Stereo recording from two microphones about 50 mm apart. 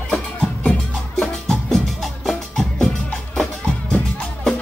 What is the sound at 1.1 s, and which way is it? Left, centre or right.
Music, centre.